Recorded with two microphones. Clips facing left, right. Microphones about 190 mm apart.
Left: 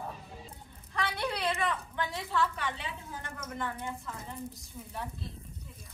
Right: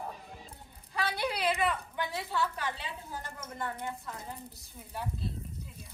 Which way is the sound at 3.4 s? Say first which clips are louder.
Left 1 dB; 25° right (ahead or behind).